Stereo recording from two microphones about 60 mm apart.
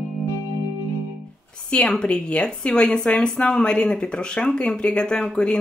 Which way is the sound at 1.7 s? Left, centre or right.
Centre.